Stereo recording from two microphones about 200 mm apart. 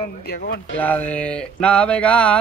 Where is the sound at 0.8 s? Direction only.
10° left (ahead or behind).